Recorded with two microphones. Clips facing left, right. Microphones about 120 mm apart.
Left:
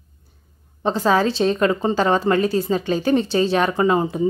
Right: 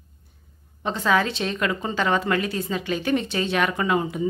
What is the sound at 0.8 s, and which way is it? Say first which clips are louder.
A woman's voice: left 4 dB; 35° left (ahead or behind).